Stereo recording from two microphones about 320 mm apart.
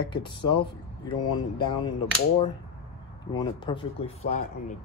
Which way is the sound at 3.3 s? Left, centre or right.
Centre.